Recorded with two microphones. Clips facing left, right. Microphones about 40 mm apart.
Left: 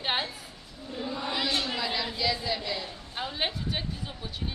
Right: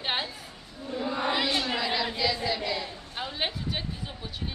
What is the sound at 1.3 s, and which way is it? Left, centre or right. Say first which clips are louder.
Chant: right 1 dB; right.